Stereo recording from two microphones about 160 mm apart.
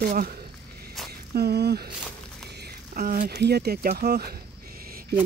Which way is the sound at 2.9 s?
60° right (ahead or behind).